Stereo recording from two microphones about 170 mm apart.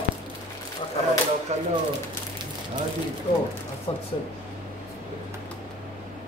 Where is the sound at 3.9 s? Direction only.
20° left (ahead or behind).